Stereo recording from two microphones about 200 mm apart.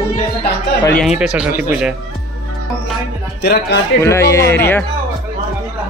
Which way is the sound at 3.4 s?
55° left (ahead or behind).